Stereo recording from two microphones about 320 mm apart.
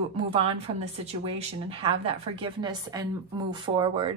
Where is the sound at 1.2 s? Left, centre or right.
Centre.